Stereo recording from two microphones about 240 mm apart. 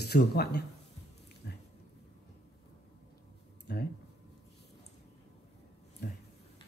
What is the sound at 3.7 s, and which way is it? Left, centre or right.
Speech, left.